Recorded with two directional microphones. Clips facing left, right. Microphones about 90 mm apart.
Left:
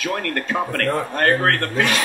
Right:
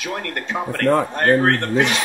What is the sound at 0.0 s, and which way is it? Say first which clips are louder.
A man's voice: left 3 dB; 20° right (ahead or behind).